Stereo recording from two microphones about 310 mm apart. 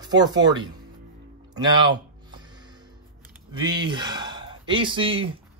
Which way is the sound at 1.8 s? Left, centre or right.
Centre.